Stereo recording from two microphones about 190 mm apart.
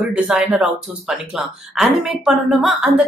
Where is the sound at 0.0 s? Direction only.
Centre (ahead or behind).